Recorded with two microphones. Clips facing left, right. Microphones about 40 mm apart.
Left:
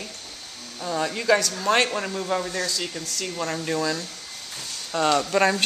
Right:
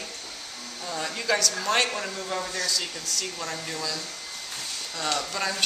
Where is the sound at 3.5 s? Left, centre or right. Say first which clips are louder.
Left 7 dB; left.